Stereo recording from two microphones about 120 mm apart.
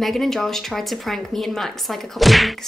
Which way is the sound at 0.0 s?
Centre (ahead or behind).